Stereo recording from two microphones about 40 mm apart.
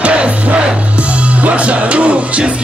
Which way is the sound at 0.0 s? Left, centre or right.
Right.